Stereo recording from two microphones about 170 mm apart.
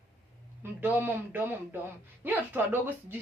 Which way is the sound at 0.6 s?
10° right (ahead or behind).